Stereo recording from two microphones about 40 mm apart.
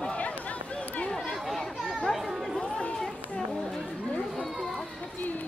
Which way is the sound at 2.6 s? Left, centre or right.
Left.